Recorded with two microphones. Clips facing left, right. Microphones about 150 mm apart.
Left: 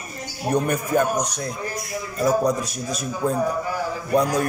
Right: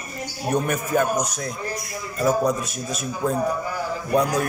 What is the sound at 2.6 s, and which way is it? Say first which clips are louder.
Speech: left 1 dB; 35° left (ahead or behind).